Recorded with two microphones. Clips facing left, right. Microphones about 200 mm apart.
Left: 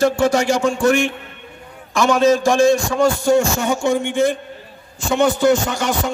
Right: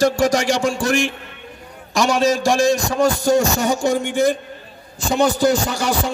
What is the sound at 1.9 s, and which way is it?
Speech, 35° right (ahead or behind).